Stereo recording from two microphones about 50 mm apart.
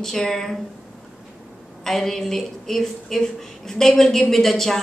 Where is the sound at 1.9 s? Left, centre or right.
Centre.